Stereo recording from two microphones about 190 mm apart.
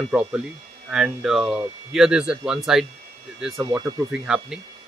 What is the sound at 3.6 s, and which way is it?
Speech, 20° right (ahead or behind).